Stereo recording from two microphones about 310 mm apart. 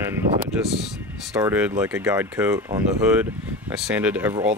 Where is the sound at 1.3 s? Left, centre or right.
Centre.